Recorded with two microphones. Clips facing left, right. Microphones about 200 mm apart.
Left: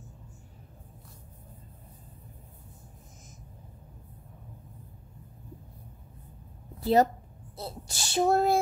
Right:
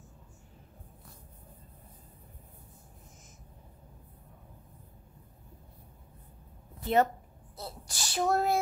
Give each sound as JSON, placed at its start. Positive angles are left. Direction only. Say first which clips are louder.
{"t": 6.8, "sound": "a woman's voice", "louder": "left 4 dB", "side_deg": 35}